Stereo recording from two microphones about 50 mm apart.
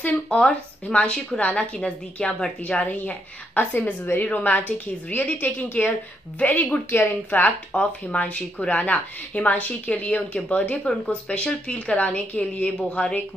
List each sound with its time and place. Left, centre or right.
0.0 s a woman's voice: left